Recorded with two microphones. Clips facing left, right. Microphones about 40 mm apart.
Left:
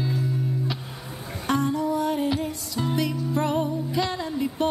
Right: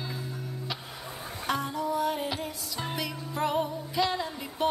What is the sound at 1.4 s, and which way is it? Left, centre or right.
Music, centre.